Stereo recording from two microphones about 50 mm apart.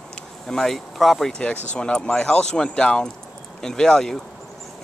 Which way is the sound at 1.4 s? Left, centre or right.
Left.